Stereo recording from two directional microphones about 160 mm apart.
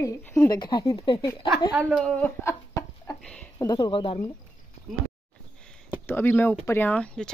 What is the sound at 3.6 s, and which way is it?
Speech, 25° left (ahead or behind).